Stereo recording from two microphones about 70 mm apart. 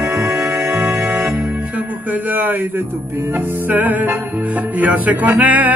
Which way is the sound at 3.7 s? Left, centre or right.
Right.